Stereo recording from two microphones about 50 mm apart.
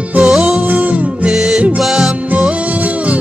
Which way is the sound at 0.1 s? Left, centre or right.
Right.